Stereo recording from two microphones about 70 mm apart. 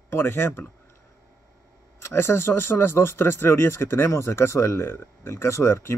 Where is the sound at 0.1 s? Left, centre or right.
Left.